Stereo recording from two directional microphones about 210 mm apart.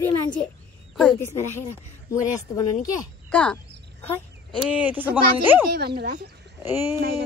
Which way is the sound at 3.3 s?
5° left (ahead or behind).